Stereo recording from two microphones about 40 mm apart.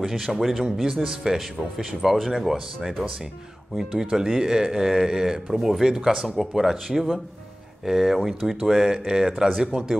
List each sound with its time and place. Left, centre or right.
0.0 s speech: centre